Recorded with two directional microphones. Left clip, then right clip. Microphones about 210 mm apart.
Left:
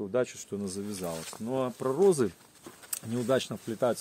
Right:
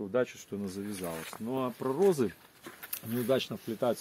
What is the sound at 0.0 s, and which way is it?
Speech, 55° left (ahead or behind).